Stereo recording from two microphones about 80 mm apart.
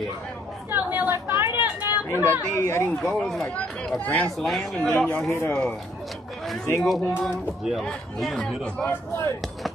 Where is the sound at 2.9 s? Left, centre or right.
Centre.